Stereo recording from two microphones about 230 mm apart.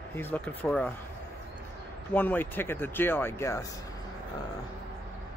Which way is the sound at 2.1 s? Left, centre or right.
Centre.